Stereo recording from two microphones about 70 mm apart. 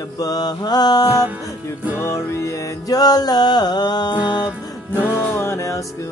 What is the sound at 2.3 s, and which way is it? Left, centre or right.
Music, left.